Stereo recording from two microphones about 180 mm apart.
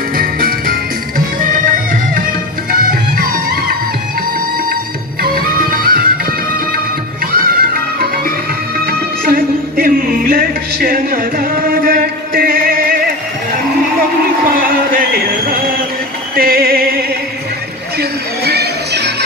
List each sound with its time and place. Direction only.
0.2 s music: 55° right (ahead or behind)
5.2 s music: 55° right (ahead or behind)
7.3 s music: 55° right (ahead or behind)
14.5 s music: 50° right (ahead or behind)
18.4 s music: 65° right (ahead or behind)